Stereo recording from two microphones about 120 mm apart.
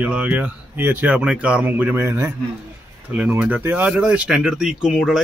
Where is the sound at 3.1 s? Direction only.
10° right (ahead or behind).